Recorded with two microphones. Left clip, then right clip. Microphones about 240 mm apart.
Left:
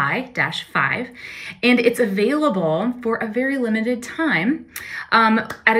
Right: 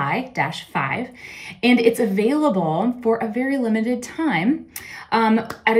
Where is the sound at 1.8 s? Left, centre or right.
Centre.